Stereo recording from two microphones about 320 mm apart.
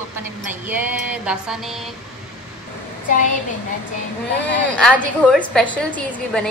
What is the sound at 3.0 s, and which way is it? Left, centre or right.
Speech, left.